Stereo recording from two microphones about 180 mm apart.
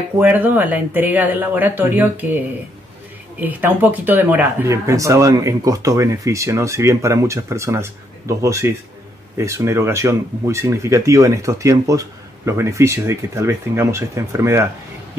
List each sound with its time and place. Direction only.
0.2 s speech: 10° right (ahead or behind)
3.3 s speech: 10° right (ahead or behind)